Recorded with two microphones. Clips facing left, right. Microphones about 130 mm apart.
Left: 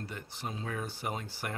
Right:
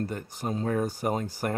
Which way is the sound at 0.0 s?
45° right (ahead or behind).